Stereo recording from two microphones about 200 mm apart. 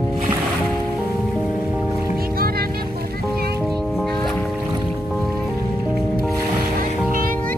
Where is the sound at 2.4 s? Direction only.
50° right (ahead or behind).